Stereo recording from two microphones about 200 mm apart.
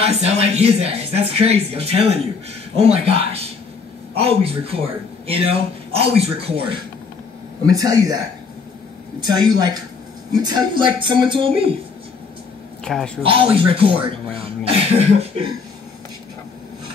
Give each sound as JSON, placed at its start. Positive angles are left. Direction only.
{"t": 0.0, "sound": "speech", "side_deg": -35}
{"t": 7.6, "sound": "a man's voice", "side_deg": -15}
{"t": 9.2, "sound": "speech", "side_deg": -20}
{"t": 12.8, "sound": "a woman's voice", "side_deg": 5}
{"t": 13.2, "sound": "speech", "side_deg": -25}